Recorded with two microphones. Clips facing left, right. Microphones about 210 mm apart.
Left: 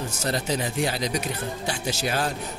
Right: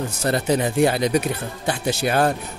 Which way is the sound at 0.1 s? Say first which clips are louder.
Right 7 dB; 60° right (ahead or behind).